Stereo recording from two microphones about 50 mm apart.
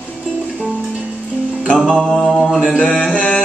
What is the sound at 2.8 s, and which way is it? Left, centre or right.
Mantra, centre.